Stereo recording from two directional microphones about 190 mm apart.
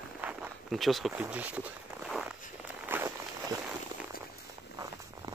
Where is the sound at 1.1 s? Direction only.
10° right (ahead or behind).